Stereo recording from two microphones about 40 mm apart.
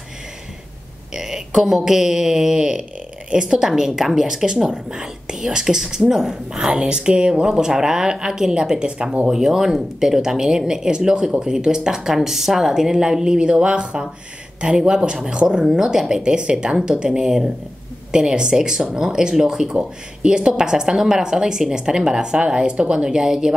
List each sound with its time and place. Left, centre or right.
1.1 s speech: centre
6.7 s a woman's voice: right
9.3 s a woman's voice: centre